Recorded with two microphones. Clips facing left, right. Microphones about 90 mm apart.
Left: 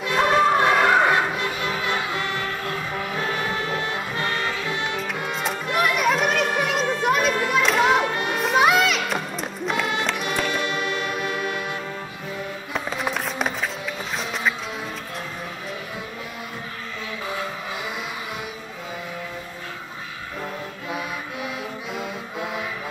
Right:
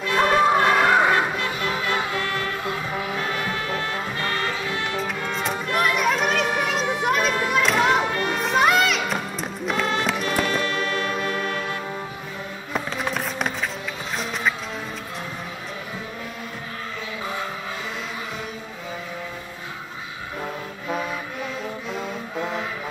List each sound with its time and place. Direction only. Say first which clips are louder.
0.2 s music: even; centre (ahead or behind)
1.3 s music: even; 15° left (ahead or behind)
5.3 s music: even; centre (ahead or behind)
5.7 s children playing: left 1 dB; centre (ahead or behind)
8.4 s music: left 1 dB; centre (ahead or behind)
10.5 s music: right 1 dB; 15° left (ahead or behind)
12.7 s music: even; centre (ahead or behind)
21.9 s music: right 1 dB; 5° left (ahead or behind)